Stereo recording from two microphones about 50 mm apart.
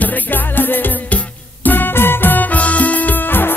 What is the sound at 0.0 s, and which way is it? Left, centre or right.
Music, left.